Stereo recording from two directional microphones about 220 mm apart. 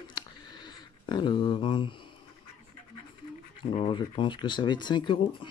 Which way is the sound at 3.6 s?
25° left (ahead or behind).